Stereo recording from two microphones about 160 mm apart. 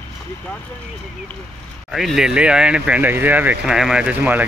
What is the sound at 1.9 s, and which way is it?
Speech, centre (ahead or behind).